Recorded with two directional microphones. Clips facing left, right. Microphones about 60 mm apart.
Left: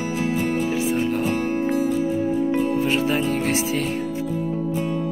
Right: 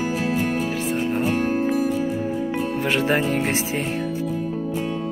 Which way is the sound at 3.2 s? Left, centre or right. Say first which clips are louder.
Even; right.